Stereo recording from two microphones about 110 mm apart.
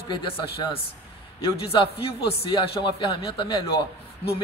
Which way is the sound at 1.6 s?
60° left (ahead or behind).